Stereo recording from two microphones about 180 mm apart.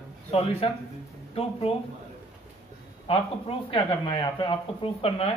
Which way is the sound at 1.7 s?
30° left (ahead or behind).